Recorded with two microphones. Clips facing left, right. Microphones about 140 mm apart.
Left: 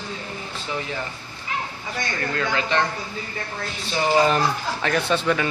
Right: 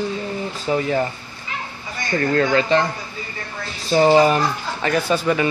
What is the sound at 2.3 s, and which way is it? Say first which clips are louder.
Speech: right 8 dB; 40° right (ahead or behind).